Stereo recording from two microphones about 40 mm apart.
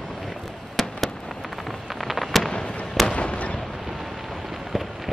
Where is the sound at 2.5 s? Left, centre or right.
Centre.